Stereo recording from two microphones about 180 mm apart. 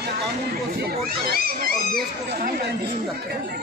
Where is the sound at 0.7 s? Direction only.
60° right (ahead or behind).